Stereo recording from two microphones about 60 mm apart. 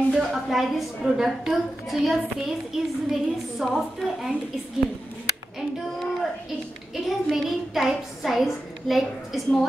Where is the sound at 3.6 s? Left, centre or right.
Centre.